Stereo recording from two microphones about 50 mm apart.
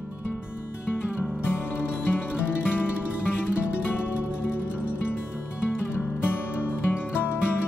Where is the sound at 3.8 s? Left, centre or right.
Left.